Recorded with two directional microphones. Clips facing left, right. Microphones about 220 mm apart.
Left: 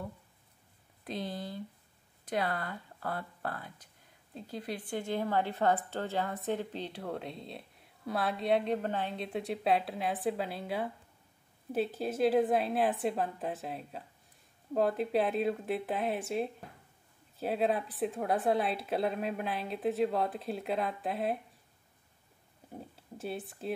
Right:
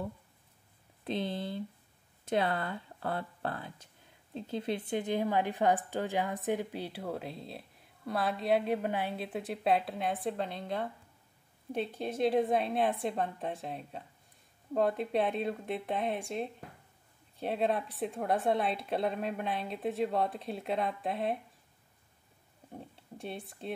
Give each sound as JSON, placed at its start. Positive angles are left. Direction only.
{"t": 1.0, "sound": "speech", "side_deg": -25}
{"t": 22.7, "sound": "speech", "side_deg": 5}